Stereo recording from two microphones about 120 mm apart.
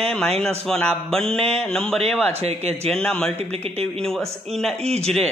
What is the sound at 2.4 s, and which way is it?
Speech, 60° right (ahead or behind).